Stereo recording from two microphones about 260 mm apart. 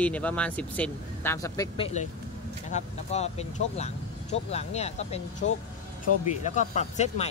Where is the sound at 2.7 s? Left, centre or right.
Left.